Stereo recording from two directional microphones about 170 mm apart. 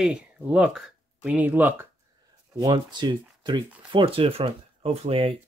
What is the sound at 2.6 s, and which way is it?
Speech, 25° right (ahead or behind).